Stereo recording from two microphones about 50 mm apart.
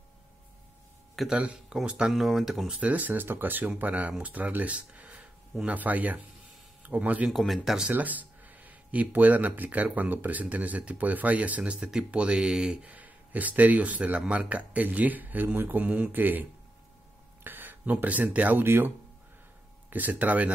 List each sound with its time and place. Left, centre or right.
1.3 s speech: centre
2.1 s speech: centre
2.8 s speech: right
7.2 s speech: centre
7.9 s speech: right
11.8 s speech: centre
12.7 s speech: right
15.8 s speech: right
17.4 s a sound: right
18.0 s speech: right
19.9 s speech: right